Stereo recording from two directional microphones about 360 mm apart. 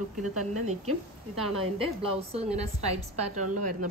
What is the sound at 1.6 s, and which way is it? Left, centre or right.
A woman's voice, centre.